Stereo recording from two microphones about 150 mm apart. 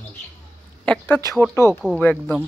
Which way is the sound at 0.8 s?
10° left (ahead or behind).